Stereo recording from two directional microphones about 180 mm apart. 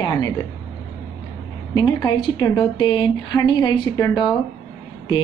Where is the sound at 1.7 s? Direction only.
20° left (ahead or behind).